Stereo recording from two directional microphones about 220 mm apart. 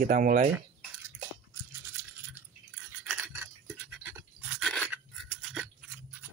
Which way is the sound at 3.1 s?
10° right (ahead or behind).